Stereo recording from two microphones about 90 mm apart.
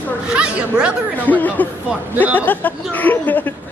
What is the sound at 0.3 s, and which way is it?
Chatter, 10° right (ahead or behind).